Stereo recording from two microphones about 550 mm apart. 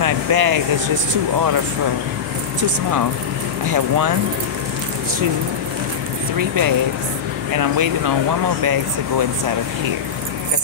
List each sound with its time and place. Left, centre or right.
0.0 s speech: right
3.6 s speech: right
6.3 s speech: right